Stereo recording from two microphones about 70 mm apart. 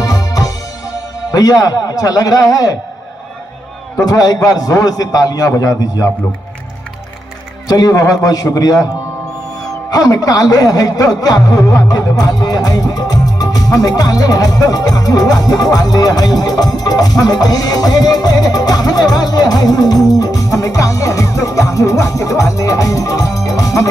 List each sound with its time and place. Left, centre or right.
0.0 s music: left
1.3 s speech: left
4.0 s speech: left
7.6 s speech: left
9.8 s speech: left
19.1 s music: left